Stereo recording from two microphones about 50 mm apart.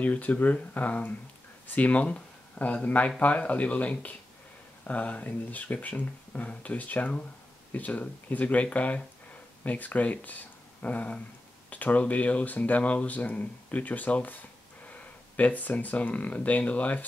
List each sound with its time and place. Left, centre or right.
0.0 s speech: left